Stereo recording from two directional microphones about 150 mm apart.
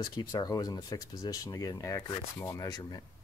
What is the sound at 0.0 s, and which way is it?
Speech, 25° left (ahead or behind).